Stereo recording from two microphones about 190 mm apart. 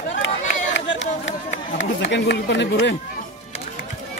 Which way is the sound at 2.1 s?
65° left (ahead or behind).